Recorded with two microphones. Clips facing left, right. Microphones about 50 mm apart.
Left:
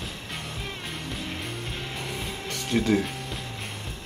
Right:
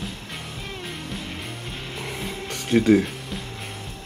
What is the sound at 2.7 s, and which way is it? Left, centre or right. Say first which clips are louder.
Speech: right 6 dB; right.